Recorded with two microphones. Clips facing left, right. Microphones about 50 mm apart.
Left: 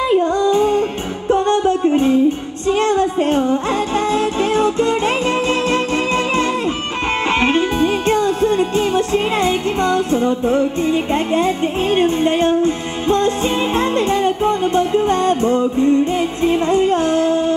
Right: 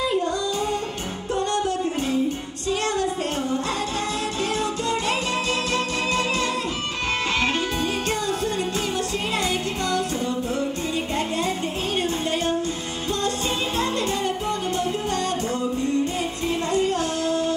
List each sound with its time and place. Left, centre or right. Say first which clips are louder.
0.1 s music: left 10 dB; left